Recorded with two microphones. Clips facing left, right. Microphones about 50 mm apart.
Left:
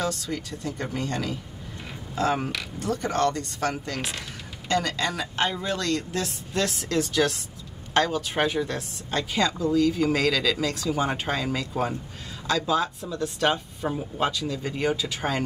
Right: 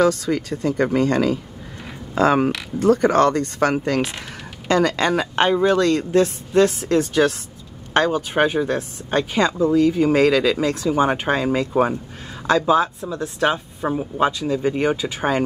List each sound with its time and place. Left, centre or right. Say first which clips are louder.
0.5 s speech: right 11 dB; right
1.1 s speech: right 11 dB; right
2.1 s speech: right 8 dB; right
5.9 s a woman's voice: right 10 dB; right